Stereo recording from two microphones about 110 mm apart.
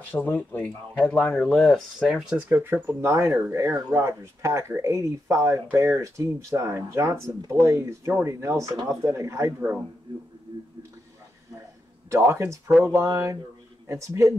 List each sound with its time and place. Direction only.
0.1 s speech: 15° left (ahead or behind); by 9.7 s 25° right (ahead or behind)
12.1 s speech: 25° right (ahead or behind)